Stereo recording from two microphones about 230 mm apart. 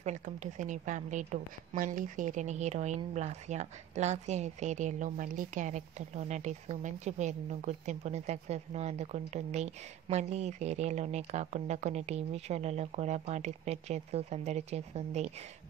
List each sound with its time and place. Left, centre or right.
0.0 s a woman's voice: right